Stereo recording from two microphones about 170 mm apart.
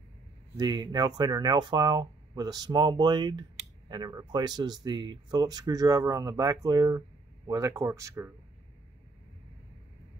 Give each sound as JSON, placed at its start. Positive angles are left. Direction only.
{"t": 0.6, "sound": "speech", "side_deg": -25}